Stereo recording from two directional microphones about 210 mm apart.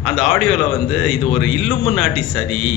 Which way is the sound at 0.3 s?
Centre (ahead or behind).